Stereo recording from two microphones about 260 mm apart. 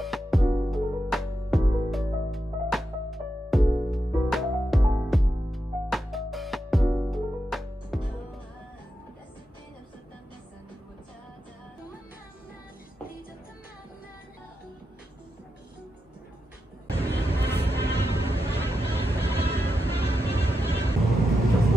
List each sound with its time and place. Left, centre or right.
0.0 s music: centre
17.2 s vehicle: centre
17.9 s vehicle: left
18.5 s vehicle: centre
18.9 s music: centre